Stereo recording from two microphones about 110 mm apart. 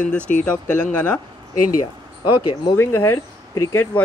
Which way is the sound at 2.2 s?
50° left (ahead or behind).